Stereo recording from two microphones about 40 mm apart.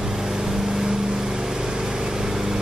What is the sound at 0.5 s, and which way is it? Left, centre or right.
Vehicle, centre.